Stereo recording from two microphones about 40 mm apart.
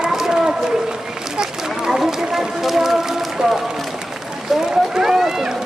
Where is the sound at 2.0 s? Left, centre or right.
Centre.